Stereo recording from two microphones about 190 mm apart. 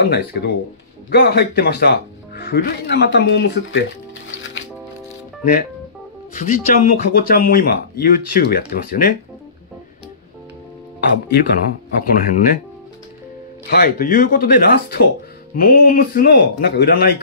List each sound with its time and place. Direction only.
0.0 s speech: 55° left (ahead or behind)
4.3 s music: 80° left
5.4 s speech: 45° left (ahead or behind)
11.1 s speech: 55° left (ahead or behind)
13.7 s speech: 50° left (ahead or behind)